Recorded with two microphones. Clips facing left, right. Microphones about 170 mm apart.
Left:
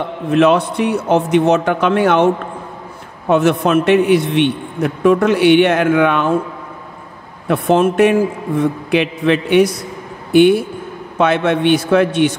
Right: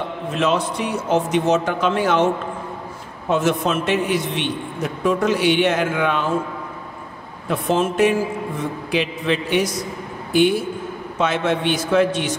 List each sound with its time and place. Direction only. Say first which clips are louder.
0.3 s a man's voice: left 8 dB; 60° left (ahead or behind)
3.3 s a man's voice: left 6 dB; 65° left (ahead or behind)
7.4 s a man's voice: left 7 dB; 60° left (ahead or behind)